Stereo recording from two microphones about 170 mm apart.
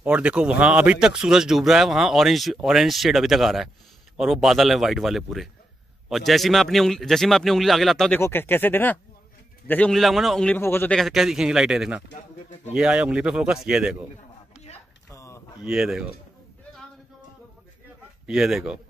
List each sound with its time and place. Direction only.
0.0 s speech: 5° right (ahead or behind)
8.2 s speech: 10° left (ahead or behind)
11.0 s speech: centre (ahead or behind)
15.0 s a sound: 15° left (ahead or behind)
15.6 s speech: 5° right (ahead or behind)
18.2 s speech: 5° right (ahead or behind)